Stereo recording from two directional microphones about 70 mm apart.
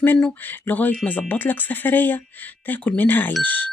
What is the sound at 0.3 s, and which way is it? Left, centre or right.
Speech, left.